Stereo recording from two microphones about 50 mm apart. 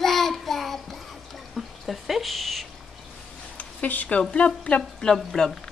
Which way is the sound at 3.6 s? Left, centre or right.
Left.